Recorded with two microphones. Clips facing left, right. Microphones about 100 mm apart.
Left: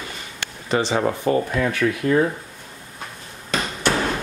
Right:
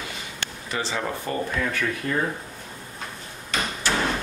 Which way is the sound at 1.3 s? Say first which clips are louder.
Left 11 dB; 90° left.